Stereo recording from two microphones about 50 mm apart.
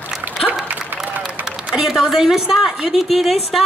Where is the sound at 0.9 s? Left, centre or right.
Right.